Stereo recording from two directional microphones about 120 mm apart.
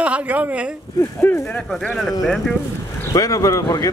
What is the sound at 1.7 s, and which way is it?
Speech, 5° left (ahead or behind).